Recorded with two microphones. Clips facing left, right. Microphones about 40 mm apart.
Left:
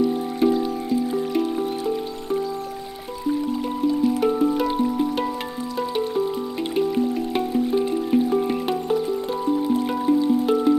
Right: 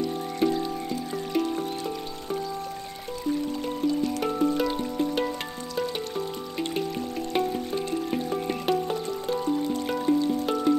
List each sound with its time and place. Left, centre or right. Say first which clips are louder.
0.4 s music: left 4 dB; centre
3.8 s music: left 6 dB; centre